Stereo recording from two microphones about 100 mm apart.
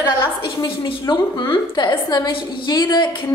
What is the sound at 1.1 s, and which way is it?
A woman's voice, 55° left (ahead or behind).